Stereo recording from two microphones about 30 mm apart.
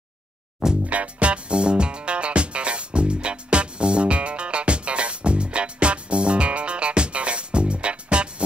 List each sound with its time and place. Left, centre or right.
0.8 s music: right